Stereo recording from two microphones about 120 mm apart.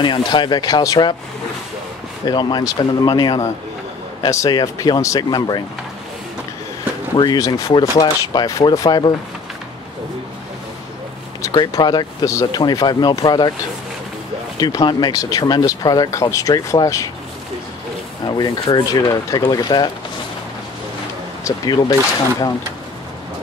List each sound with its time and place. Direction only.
0.0 s speech: 40° left (ahead or behind)
2.2 s speech: 35° left (ahead or behind)
7.2 s speech: 35° left (ahead or behind)
11.5 s speech: 35° left (ahead or behind)
14.6 s speech: 35° left (ahead or behind)
18.2 s speech: 35° left (ahead or behind)
21.5 s speech: 35° left (ahead or behind)